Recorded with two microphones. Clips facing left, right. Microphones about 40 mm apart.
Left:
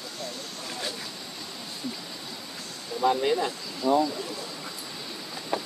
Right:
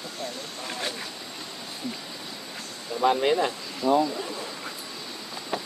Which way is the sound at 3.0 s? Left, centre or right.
Right.